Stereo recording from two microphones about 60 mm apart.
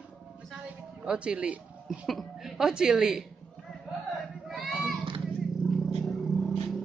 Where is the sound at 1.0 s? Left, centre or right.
Centre.